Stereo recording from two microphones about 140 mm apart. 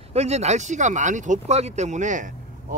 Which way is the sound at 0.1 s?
50° right (ahead or behind).